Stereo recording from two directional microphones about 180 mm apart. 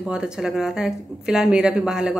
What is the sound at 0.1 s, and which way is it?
A woman's voice, 5° right (ahead or behind).